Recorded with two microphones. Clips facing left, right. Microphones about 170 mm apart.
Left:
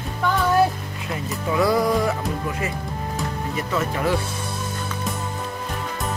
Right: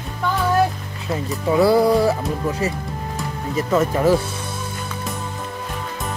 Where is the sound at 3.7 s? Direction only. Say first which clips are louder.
Right 7 dB; 40° right (ahead or behind).